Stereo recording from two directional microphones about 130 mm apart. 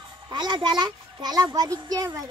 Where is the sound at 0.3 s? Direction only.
35° right (ahead or behind).